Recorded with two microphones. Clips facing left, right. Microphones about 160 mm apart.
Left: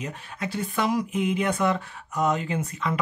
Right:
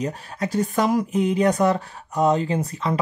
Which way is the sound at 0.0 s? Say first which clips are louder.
Right 6 dB; 40° right (ahead or behind).